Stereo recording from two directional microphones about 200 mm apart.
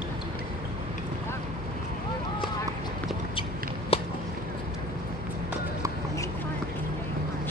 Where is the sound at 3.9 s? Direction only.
30° left (ahead or behind).